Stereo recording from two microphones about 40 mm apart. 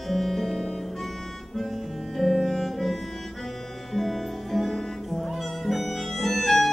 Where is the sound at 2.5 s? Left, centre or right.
Centre.